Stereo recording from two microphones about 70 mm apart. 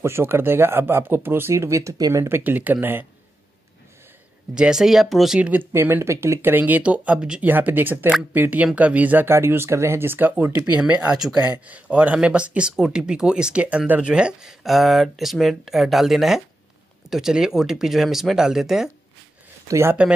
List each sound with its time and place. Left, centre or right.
0.0 s speech: right
2.0 s speech: right
2.2 s speech: right
4.6 s speech: centre
5.4 s speech: right
5.7 s speech: right; by 7.4 s centre
7.4 s speech: right
9.3 s speech: right
10.6 s speech: centre
11.4 s speech: right; by 18.9 s centre
19.7 s speech: right